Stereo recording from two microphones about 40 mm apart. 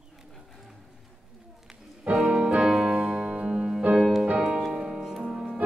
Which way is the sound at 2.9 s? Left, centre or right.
Right.